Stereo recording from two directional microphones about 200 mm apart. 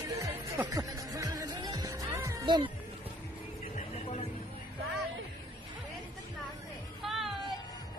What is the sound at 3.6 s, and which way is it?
Vehicle, 35° left (ahead or behind).